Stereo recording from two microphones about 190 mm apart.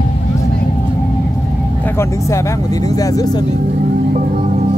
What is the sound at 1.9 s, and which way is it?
Speech, 15° left (ahead or behind).